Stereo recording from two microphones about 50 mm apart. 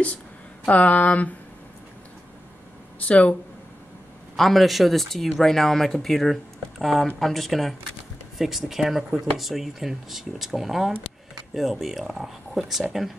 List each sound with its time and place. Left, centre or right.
0.7 s speech: left
3.0 s speech: left
4.4 s speech: centre